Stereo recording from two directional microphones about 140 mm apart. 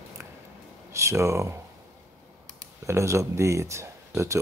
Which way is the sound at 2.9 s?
20° right (ahead or behind).